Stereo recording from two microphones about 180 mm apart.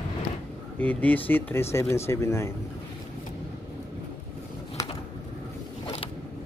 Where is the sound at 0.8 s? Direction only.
10° left (ahead or behind).